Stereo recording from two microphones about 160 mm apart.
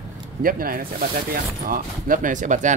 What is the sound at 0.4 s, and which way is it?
Speech, 65° right (ahead or behind).